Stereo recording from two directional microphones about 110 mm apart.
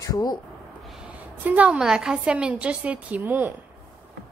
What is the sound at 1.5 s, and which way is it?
A woman's voice, 10° right (ahead or behind).